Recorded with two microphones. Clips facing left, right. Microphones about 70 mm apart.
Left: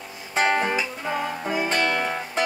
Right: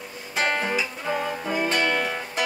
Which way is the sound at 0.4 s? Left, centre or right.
Left.